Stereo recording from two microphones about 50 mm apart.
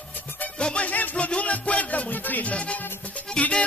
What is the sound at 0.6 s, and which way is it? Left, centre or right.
Music, left.